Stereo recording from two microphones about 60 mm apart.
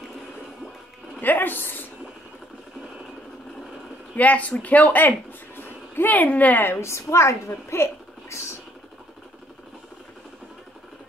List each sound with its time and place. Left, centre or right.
1.2 s speech: left
4.1 s speech: left
6.8 s a woman's voice: left